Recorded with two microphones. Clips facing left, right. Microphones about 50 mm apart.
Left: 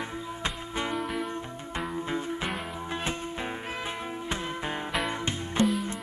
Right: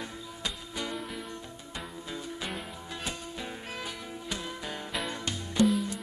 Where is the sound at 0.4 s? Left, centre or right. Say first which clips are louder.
Left 4 dB; left.